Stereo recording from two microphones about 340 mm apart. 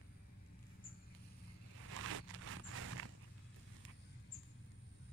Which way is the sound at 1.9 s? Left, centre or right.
Right.